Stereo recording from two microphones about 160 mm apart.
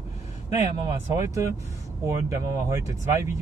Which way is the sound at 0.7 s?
25° right (ahead or behind).